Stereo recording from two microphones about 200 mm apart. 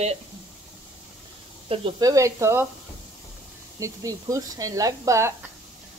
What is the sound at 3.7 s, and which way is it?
Speech, 15° right (ahead or behind).